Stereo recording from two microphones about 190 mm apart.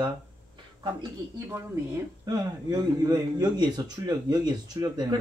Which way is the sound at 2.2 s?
20° right (ahead or behind).